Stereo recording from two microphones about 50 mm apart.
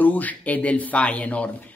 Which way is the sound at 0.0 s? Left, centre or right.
Left.